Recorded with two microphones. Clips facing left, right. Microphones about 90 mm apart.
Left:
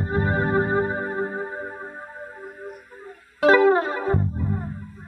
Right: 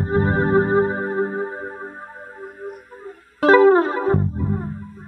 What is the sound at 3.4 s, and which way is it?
Music, 40° right (ahead or behind).